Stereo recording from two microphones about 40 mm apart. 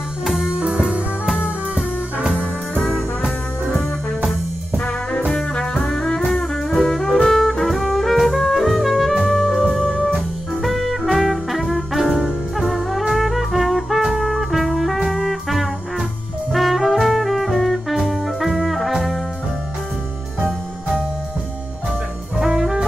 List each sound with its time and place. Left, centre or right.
0.2 s music: centre
0.5 s music: right
5.9 s music: centre
13.1 s brass instrument: centre
15.0 s music: centre
16.5 s brass instrument: centre
20.3 s music: centre
22.4 s brass instrument: centre